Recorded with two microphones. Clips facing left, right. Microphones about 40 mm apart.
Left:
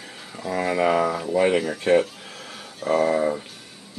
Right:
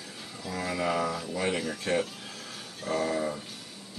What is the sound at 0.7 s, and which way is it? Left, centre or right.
Speech, left.